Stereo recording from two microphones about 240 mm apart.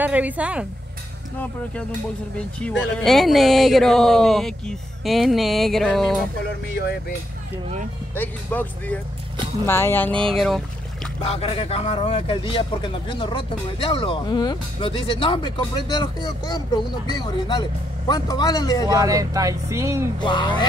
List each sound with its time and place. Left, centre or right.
0.0 s speech: centre
2.3 s speech: centre
8.1 s speech: centre
11.2 s speech: left
18.9 s speech: centre
20.2 s speech: centre